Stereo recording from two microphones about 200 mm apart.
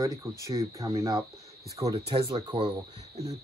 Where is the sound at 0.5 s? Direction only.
15° right (ahead or behind).